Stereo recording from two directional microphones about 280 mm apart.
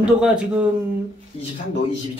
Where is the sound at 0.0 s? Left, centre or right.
Centre.